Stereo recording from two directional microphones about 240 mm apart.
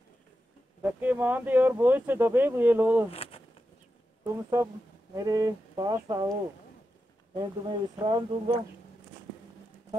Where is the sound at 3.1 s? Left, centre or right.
Left.